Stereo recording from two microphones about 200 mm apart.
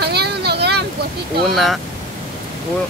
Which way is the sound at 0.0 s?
55° right (ahead or behind).